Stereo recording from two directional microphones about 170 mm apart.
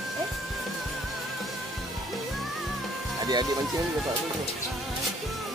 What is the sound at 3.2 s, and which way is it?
Music, 25° right (ahead or behind).